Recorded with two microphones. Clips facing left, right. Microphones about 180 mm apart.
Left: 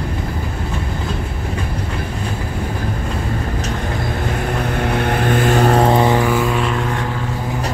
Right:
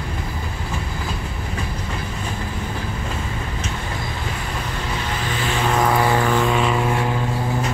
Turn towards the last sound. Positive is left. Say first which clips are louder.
# left 1 dB
turn(degrees=0)  # may be behind; listen again after turning